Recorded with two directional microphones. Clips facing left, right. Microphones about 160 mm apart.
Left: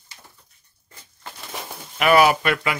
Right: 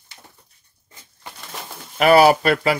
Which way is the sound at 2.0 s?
35° right (ahead or behind).